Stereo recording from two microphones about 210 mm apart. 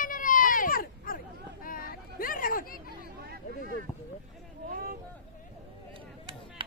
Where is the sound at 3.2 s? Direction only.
45° right (ahead or behind).